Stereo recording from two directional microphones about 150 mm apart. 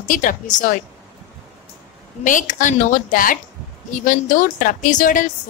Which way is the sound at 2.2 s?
60° left (ahead or behind).